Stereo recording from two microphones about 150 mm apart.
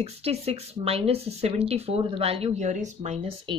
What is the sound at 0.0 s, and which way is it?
Speech, 45° right (ahead or behind).